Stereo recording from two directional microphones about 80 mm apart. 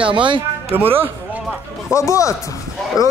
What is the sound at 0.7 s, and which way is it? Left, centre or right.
Speech, right.